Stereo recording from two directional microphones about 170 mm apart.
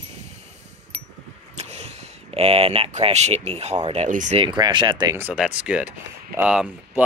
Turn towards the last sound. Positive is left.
turn(degrees=-5)  # may be behind; listen again after turning